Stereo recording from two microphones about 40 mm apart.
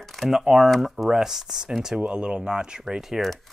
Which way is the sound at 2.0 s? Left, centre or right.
Right.